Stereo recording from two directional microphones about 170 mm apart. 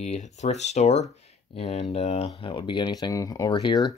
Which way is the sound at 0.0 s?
40° left (ahead or behind).